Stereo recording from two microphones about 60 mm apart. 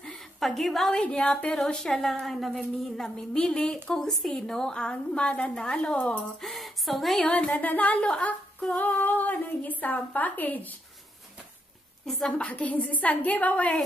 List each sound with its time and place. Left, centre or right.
0.4 s a woman's voice: centre
3.3 s a woman's voice: centre
6.4 s speech: centre
7.2 s speech: left
12.3 s speech: left